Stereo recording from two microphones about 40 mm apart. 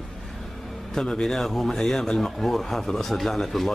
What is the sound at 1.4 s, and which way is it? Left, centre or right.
Speech, centre.